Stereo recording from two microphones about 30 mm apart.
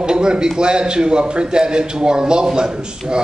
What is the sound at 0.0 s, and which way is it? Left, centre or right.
A man's voice, right.